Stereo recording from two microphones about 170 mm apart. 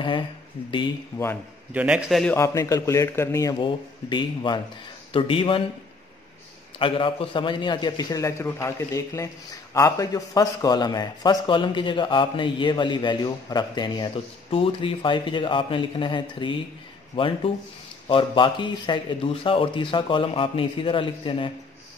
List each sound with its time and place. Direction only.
0.7 s a man's voice: 30° left (ahead or behind)
1.7 s a man's voice: 5° right (ahead or behind)
2.3 s a man's voice: 20° left (ahead or behind)
3.5 s a man's voice: 30° left (ahead or behind)
6.8 s a man's voice: 30° left (ahead or behind)